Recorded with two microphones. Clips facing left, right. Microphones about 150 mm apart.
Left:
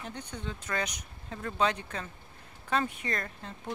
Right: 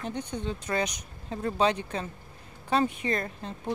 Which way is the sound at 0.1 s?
20° right (ahead or behind).